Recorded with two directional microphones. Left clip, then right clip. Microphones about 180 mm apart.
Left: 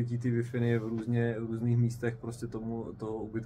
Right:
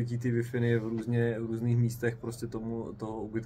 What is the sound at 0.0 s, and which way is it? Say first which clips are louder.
A man's voice: right 1 dB; 15° right (ahead or behind).